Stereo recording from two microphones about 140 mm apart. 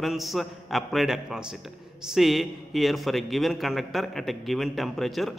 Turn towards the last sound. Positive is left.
turn(degrees=0)  # may be behind; listen again after turning